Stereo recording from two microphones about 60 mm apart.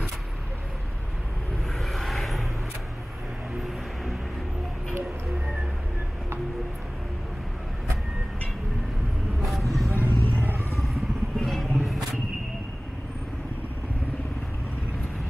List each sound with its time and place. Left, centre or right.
1.8 s vehicle: centre
3.6 s music: centre
9.5 s vehicle: centre
9.9 s vehicle: left
10.8 s vehicle: centre